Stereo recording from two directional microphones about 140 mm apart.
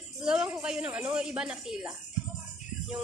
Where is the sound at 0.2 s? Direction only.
5° right (ahead or behind).